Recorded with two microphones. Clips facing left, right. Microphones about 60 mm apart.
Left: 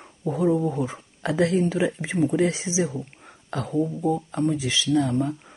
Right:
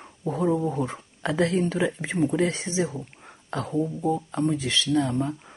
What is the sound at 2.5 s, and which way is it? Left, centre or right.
Speech, right.